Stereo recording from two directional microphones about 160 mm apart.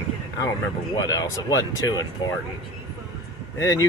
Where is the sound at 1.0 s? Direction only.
25° left (ahead or behind).